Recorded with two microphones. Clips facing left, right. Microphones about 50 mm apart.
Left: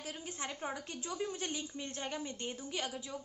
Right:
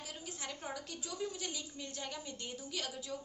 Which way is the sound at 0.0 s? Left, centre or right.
Left.